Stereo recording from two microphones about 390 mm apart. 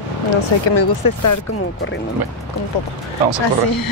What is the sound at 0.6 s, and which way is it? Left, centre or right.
Speech, left.